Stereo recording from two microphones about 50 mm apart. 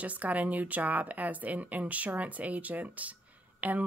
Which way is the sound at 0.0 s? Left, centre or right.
Right.